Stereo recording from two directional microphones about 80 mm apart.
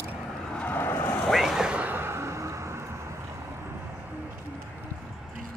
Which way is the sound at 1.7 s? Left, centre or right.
Right.